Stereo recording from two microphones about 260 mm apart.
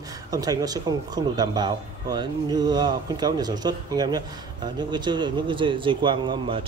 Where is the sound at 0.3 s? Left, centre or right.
Centre.